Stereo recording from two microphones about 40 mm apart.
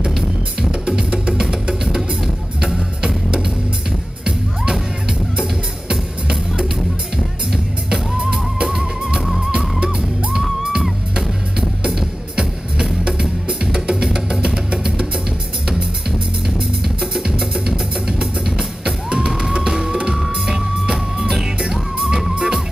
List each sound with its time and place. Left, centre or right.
0.2 s music: centre
5.4 s music: right
7.5 s drum kit: centre
8.7 s music: centre
9.2 s music: centre
9.5 s music: right
16.8 s music: centre
17.6 s music: centre
22.3 s music: right